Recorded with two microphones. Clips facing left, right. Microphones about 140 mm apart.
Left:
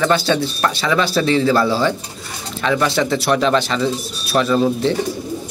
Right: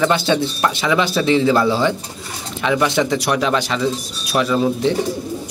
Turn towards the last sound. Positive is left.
turn(degrees=-10)  # may be behind; listen again after turning